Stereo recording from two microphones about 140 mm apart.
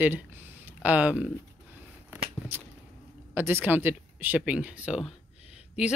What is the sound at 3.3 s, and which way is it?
Speech, 15° right (ahead or behind).